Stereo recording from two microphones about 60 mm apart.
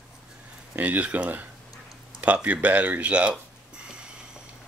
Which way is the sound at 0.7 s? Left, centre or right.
Right.